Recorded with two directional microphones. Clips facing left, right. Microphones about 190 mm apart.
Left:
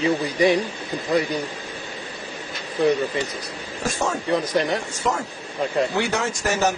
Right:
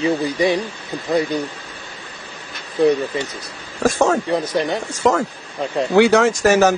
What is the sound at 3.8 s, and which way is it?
Speech, 90° right.